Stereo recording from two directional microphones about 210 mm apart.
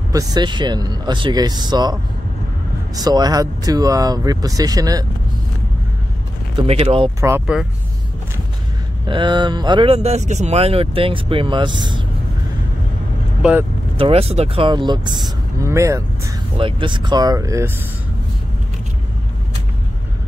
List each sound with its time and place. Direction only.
0.1 s speech: 15° right (ahead or behind)
3.0 s speech: 20° right (ahead or behind)
6.5 s speech: 25° right (ahead or behind)
7.2 s speech: 10° right (ahead or behind)
9.0 s speech: 20° right (ahead or behind)
13.4 s speech: 5° right (ahead or behind)
13.9 s speech: 25° right (ahead or behind)